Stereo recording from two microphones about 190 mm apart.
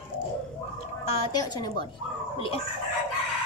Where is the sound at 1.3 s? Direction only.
20° left (ahead or behind).